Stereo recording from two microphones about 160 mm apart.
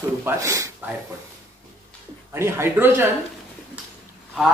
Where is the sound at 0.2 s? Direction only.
15° right (ahead or behind).